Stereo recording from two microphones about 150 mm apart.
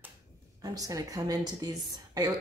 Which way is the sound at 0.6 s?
25° right (ahead or behind).